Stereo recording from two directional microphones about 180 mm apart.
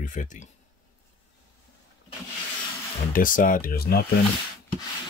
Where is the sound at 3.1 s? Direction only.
50° left (ahead or behind).